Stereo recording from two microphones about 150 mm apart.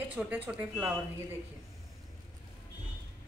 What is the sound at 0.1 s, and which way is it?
Speech, 10° right (ahead or behind).